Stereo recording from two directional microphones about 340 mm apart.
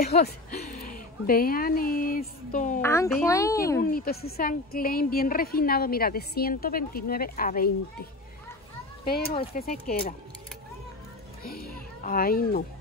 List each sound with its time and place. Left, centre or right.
0.0 s a woman's voice: left
2.8 s speech: centre
3.9 s a woman's voice: left
11.4 s a child's voice: left